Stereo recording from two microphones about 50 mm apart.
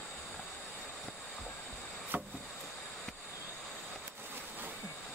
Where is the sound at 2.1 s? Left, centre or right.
Right.